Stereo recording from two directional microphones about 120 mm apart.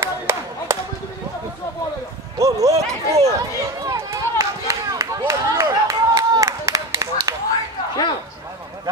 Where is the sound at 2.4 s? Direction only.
25° right (ahead or behind).